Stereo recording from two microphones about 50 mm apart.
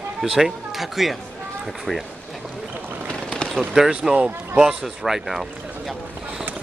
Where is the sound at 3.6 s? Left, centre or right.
Centre.